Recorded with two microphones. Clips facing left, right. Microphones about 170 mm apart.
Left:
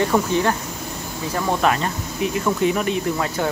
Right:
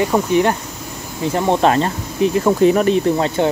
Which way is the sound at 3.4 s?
25° right (ahead or behind).